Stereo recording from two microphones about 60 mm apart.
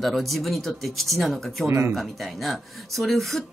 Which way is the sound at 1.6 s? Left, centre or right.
Right.